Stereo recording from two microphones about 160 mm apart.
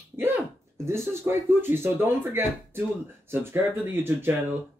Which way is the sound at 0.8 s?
15° right (ahead or behind).